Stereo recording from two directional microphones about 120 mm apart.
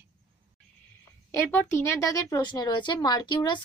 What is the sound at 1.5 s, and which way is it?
Speech, 20° left (ahead or behind).